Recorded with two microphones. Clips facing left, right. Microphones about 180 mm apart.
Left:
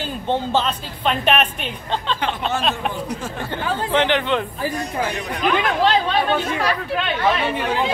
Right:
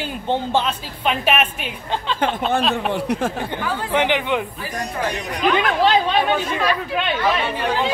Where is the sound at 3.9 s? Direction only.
15° right (ahead or behind).